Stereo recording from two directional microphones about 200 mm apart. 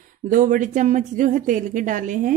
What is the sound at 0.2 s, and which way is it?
Speech, 40° right (ahead or behind).